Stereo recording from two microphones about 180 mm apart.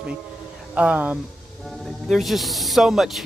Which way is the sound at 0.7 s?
5° right (ahead or behind).